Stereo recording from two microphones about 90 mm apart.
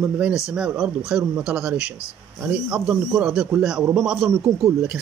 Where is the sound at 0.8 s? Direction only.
5° right (ahead or behind).